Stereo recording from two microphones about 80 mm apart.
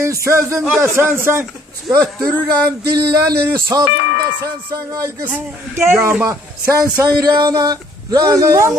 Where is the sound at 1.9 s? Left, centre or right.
Right.